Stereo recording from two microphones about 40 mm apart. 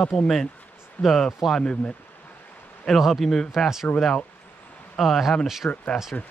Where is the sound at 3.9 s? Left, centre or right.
Left.